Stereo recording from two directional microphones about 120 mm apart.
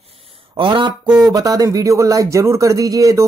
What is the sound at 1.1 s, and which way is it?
A man's voice, 30° right (ahead or behind).